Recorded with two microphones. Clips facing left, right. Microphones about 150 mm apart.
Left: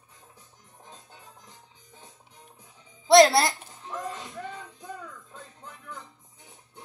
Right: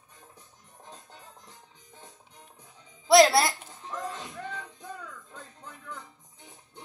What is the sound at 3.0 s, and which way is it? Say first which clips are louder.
Music: left 2 dB; centre (ahead or behind).